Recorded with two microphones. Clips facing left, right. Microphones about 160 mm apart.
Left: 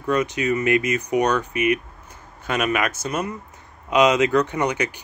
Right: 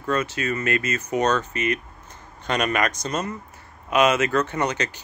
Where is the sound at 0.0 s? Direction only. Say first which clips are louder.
Left 3 dB; 15° left (ahead or behind).